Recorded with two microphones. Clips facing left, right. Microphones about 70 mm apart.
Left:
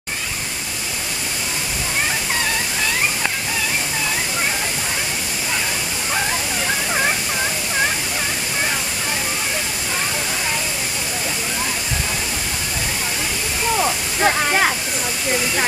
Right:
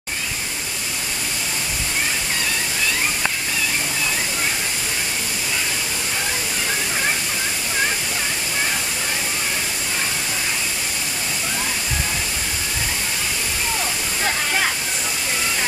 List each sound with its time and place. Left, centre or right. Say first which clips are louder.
13.7 s waterfall: left 5 dB; left